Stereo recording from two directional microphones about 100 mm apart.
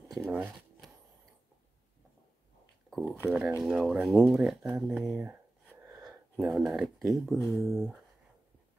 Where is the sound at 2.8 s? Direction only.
Centre (ahead or behind).